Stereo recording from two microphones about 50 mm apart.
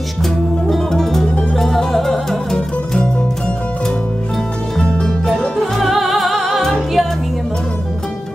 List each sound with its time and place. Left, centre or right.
0.2 s music: centre
4.8 s music: left
5.8 s music: centre